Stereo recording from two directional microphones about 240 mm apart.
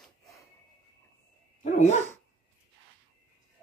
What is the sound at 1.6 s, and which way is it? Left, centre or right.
Dog, left.